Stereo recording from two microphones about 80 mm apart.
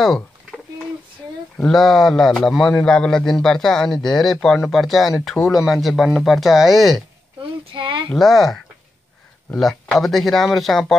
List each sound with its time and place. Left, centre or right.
0.0 s a sound: centre
1.7 s a man's voice: centre
7.3 s speech: right
8.1 s a man's voice: centre
9.6 s a man's voice: centre